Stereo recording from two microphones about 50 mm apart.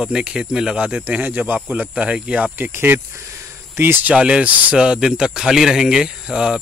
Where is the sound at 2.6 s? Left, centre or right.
Right.